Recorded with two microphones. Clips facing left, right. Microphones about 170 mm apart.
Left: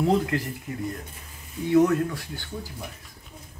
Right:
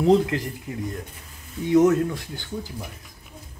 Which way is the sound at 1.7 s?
20° right (ahead or behind).